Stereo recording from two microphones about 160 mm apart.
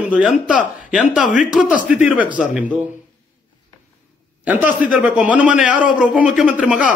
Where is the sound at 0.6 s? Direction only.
55° left (ahead or behind).